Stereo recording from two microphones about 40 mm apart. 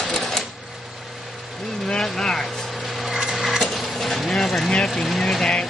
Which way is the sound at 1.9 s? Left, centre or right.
Centre.